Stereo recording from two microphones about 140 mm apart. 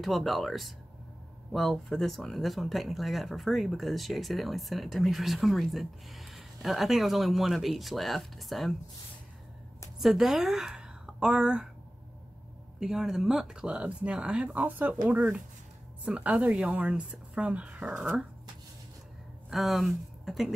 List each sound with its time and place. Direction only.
0.0 s speech: centre (ahead or behind)
9.9 s a woman's voice: centre (ahead or behind)
12.8 s speech: 5° right (ahead or behind)
19.5 s speech: centre (ahead or behind)